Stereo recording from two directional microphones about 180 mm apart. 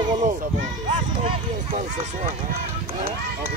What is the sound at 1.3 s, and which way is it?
Speech, 35° right (ahead or behind).